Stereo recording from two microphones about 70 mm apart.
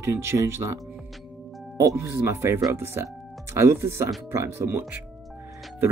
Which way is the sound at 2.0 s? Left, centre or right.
Right.